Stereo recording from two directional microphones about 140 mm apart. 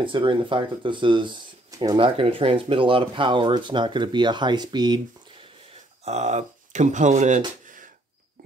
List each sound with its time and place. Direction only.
0.0 s speech: 35° right (ahead or behind)
6.0 s speech: 55° right (ahead or behind); by 7.9 s 70° right (ahead or behind)